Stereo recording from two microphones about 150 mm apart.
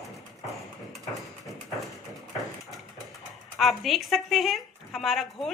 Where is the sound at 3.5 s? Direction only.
Centre (ahead or behind).